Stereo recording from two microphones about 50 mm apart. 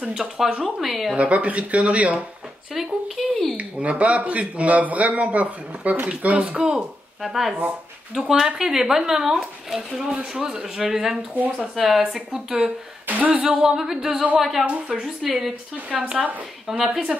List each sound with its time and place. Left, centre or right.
0.1 s a woman's voice: centre
1.1 s speech: right
2.7 s speech: centre
3.5 s speech: right
7.2 s a woman's voice: centre
13.0 s speech: right
13.3 s a woman's voice: centre
15.9 s speech: centre
16.6 s a woman's voice: centre